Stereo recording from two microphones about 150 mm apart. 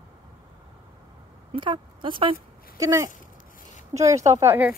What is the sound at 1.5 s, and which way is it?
Speech, 30° right (ahead or behind).